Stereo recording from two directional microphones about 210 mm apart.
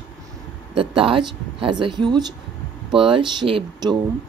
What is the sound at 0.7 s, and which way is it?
Speech, 25° right (ahead or behind).